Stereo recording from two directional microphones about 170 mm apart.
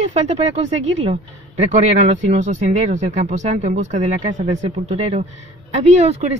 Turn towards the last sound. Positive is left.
turn(degrees=-40)  # may be behind; listen again after turning